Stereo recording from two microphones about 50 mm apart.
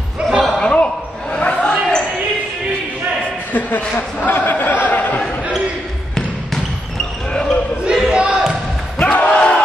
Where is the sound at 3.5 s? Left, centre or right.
Left.